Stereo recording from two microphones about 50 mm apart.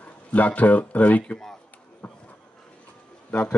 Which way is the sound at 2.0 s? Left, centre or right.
Left.